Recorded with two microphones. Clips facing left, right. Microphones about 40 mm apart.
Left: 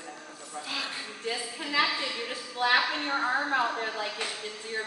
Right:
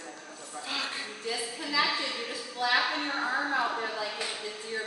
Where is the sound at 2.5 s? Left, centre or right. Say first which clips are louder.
Left 3 dB; left.